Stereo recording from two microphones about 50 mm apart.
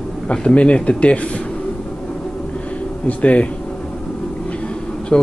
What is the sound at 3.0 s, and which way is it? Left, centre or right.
Speech, left.